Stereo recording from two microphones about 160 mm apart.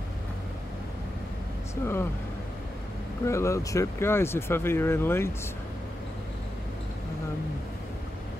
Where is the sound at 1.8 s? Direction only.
15° left (ahead or behind).